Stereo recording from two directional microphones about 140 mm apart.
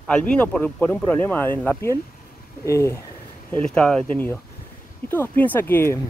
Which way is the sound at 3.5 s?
10° left (ahead or behind).